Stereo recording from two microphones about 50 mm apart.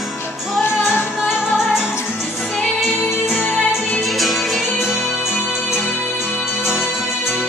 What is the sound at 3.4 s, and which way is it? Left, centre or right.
Music, left.